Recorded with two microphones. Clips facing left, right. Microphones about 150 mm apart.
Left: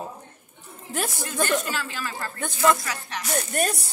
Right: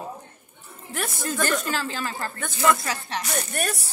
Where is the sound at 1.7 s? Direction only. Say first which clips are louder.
Right 3 dB; 30° right (ahead or behind).